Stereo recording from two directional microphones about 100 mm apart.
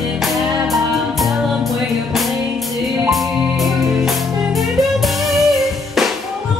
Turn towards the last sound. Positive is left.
turn(degrees=0)  # may be behind; listen again after turning